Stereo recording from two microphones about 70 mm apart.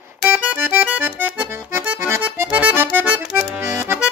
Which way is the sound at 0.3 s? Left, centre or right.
Right.